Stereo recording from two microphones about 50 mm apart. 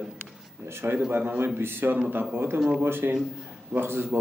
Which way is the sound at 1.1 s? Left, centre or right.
Right.